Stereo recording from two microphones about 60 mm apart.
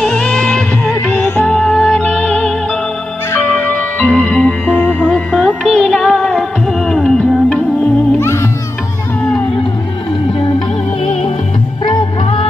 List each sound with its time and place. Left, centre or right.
0.0 s music of bollywood: centre
1.1 s music: left
1.4 s music: centre
3.6 s music: left
4.8 s music: left
5.1 s music: centre
8.2 s music: left